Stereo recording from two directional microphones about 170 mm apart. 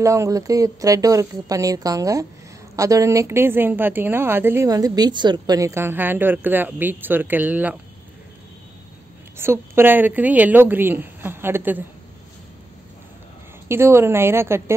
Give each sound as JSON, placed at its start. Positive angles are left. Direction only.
{"t": 0.0, "sound": "a woman's voice", "side_deg": -20}
{"t": 9.4, "sound": "a woman's voice", "side_deg": -15}
{"t": 13.7, "sound": "a woman's voice", "side_deg": -15}